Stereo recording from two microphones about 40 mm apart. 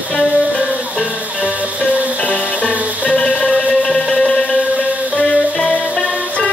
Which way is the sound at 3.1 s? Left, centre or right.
Left.